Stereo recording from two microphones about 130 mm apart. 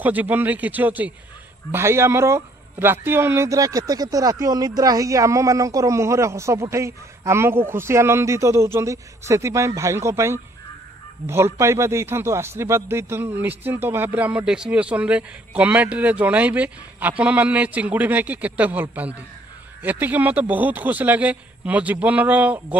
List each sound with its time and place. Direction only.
0.0 s a man's voice: 10° right (ahead or behind)